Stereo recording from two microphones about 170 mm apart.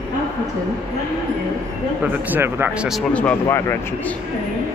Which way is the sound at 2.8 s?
5° left (ahead or behind).